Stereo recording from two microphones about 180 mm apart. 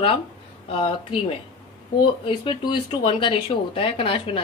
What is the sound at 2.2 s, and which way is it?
A woman's voice, 30° left (ahead or behind).